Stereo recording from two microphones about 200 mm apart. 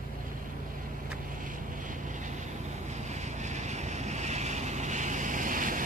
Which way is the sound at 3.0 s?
35° right (ahead or behind).